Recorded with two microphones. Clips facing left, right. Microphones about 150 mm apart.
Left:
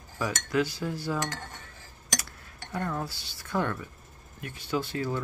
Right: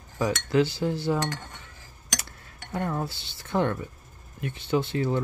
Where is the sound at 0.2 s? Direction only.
25° right (ahead or behind).